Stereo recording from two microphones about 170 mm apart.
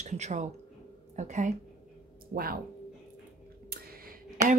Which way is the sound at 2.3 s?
60° right (ahead or behind).